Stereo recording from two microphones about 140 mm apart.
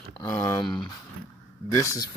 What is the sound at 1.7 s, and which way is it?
Speech, 25° left (ahead or behind).